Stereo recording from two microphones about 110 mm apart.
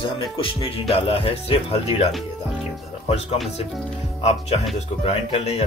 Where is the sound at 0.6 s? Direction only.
60° left (ahead or behind).